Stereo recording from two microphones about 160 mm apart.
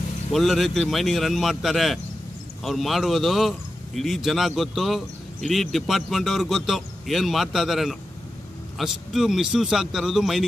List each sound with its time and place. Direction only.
0.3 s a man's voice: centre (ahead or behind)